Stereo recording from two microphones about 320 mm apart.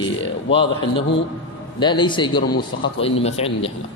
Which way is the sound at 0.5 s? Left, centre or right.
Centre.